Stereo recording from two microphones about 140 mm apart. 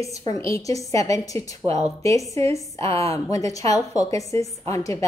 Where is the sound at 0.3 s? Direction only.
25° left (ahead or behind).